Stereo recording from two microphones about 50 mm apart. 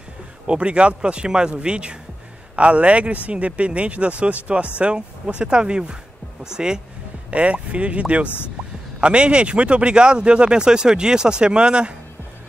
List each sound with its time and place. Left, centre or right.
0.5 s speech: right
7.2 s speech: right